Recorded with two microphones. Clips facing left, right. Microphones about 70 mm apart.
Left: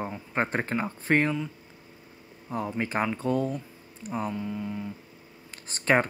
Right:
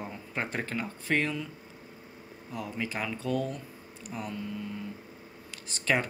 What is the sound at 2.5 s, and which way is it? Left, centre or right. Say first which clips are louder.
Speech: left 5 dB; left.